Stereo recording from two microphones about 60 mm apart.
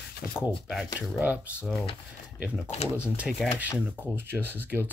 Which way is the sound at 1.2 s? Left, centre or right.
Right.